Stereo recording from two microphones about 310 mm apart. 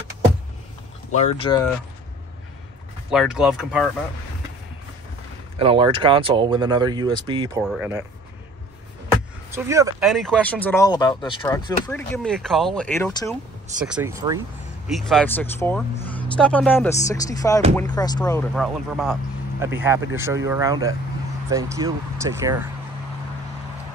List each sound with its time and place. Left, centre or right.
1.4 s speech: centre
3.1 s speech: centre
5.6 s speech: centre
7.6 s speech: centre
9.5 s speech: centre
13.8 s speech: centre
14.9 s speech: centre
18.5 s speech: centre